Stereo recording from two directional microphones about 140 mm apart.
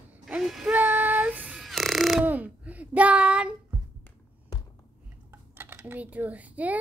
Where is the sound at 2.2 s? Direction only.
10° right (ahead or behind).